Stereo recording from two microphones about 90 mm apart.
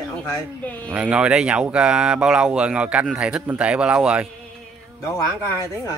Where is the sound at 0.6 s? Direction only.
15° left (ahead or behind).